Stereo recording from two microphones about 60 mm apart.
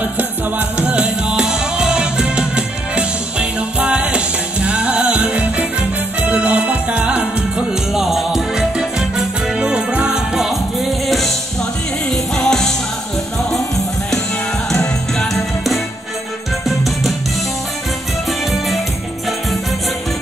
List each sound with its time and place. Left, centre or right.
0.0 s music: right
8.0 s music: centre
11.1 s music: centre
14.7 s music: centre